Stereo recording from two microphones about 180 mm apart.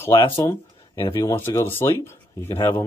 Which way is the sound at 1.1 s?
15° left (ahead or behind).